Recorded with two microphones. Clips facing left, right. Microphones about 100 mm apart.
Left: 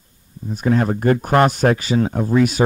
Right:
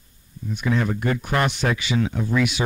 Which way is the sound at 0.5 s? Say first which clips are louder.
Left 5 dB; 40° left (ahead or behind).